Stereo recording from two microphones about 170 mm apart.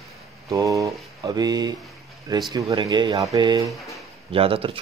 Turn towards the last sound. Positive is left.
turn(degrees=-35)  # may be behind; listen again after turning